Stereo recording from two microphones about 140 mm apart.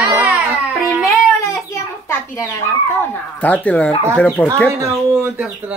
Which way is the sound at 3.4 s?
10° left (ahead or behind).